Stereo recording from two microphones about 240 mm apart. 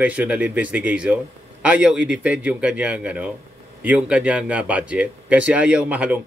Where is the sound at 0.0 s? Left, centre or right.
Centre.